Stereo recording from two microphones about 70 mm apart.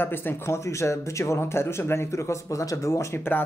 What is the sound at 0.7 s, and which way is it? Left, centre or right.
Speech, left.